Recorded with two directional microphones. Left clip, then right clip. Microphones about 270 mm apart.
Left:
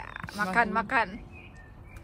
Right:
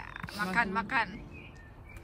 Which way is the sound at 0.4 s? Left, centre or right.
Centre.